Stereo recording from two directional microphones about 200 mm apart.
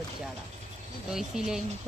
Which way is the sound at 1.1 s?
5° right (ahead or behind).